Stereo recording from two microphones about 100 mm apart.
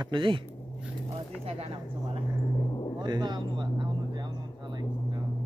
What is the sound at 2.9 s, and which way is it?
Speech, 45° right (ahead or behind).